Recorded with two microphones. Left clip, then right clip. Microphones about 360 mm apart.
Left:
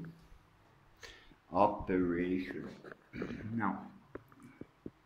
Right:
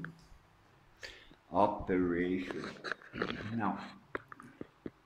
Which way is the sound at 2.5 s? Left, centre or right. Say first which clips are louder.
Right 6 dB; right.